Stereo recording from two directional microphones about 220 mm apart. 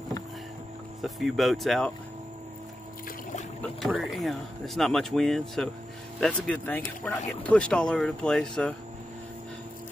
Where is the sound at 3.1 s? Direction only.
40° left (ahead or behind).